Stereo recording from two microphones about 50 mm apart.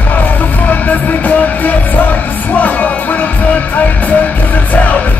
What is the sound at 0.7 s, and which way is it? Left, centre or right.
Music, left.